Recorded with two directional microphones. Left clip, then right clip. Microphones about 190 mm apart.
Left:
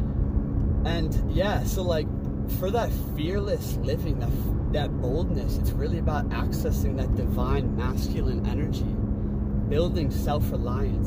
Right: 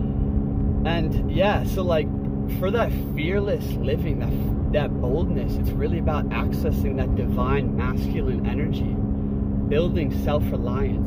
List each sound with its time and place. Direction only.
1.4 s speech: 5° right (ahead or behind)
9.7 s speech: 5° right (ahead or behind)